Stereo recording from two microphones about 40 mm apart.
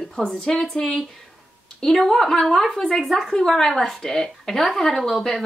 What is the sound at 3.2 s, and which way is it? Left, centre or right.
A woman's voice, centre.